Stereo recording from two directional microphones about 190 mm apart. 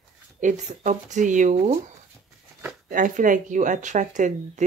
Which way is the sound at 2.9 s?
45° right (ahead or behind).